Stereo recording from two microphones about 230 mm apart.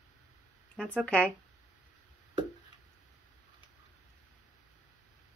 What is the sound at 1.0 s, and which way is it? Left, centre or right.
Speech, centre.